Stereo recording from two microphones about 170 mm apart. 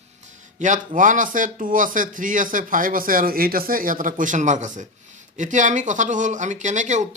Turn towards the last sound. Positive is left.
turn(degrees=-45)  # may be behind; listen again after turning